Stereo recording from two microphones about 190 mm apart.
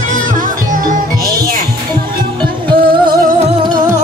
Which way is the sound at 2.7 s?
25° right (ahead or behind).